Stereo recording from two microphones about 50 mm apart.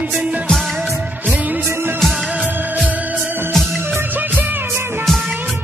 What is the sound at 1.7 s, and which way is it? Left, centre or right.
Music, right.